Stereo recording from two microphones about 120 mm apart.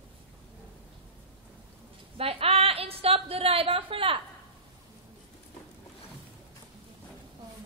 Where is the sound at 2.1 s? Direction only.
55° right (ahead or behind).